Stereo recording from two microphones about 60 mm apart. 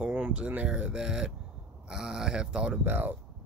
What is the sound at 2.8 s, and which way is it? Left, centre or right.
Speech, right.